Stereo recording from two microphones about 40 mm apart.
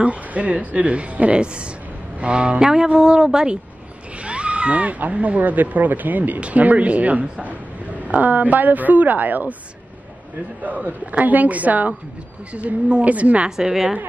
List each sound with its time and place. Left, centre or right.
0.0 s speech: right; by 3.5 s centre
4.2 s a sound: right
5.1 s a woman's voice: right
10.6 s a woman's voice: right
13.6 s speech: centre